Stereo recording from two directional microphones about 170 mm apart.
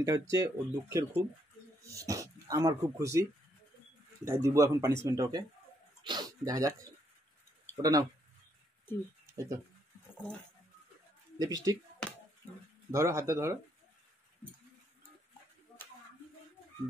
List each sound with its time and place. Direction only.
0.0 s speech: 20° right (ahead or behind)
7.7 s speech: 20° right (ahead or behind)
8.9 s speech: 10° left (ahead or behind)
9.2 s a sound: 15° right (ahead or behind)
11.3 s speech: 20° right (ahead or behind)
12.9 s speech: 15° right (ahead or behind)